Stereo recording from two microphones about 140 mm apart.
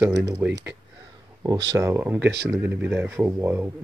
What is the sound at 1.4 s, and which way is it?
Speech, 25° right (ahead or behind).